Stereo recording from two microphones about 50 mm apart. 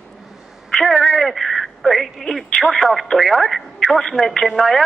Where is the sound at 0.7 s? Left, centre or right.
Centre.